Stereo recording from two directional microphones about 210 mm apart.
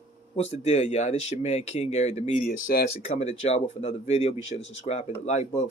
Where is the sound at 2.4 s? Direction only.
45° left (ahead or behind).